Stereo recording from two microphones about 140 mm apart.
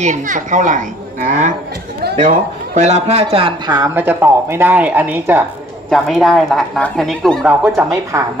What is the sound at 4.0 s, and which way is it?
A woman's voice, 15° right (ahead or behind).